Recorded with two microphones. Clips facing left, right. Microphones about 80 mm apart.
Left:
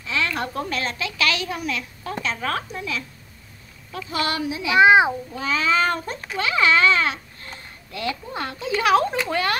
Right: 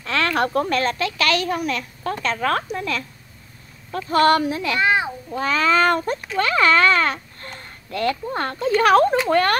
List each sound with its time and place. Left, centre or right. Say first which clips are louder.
0.0 s a child's voice: right 5 dB; right
4.7 s a child's voice: left 8 dB; centre
5.3 s a child's voice: right 3 dB; right